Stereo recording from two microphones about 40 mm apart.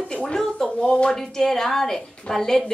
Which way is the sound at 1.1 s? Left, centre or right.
Centre.